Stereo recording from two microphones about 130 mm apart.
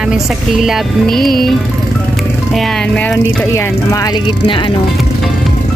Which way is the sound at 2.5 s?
5° left (ahead or behind).